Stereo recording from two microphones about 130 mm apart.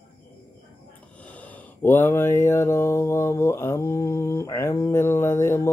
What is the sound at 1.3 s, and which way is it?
Mantra, 10° left (ahead or behind).